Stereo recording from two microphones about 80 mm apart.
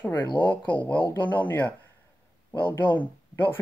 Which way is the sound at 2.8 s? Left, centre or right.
Left.